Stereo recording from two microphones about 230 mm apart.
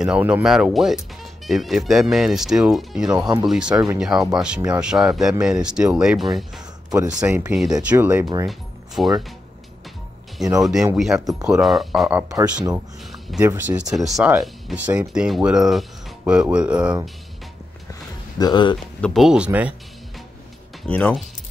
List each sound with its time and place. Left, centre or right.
0.0 s speech: centre
8.5 s music: centre
10.3 s speech: centre
13.4 s speech: centre
18.4 s speech: centre
18.9 s speech: centre
20.8 s speech: centre